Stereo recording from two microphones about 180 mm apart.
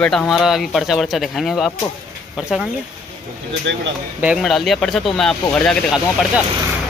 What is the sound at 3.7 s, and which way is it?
Speech, 80° right.